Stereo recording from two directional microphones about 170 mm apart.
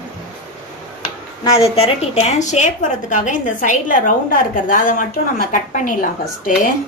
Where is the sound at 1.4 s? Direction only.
35° left (ahead or behind); by 6.7 s 55° left (ahead or behind).